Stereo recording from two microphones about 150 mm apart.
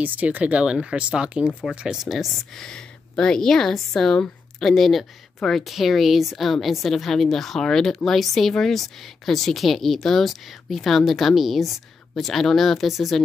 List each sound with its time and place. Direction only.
0.0 s speech: 10° right (ahead or behind)